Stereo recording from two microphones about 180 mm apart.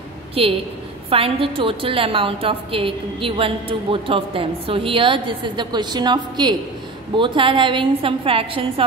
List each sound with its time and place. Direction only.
0.3 s a woman's voice: 30° right (ahead or behind)